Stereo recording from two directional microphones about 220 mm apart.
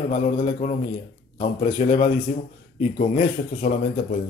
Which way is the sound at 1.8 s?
30° left (ahead or behind).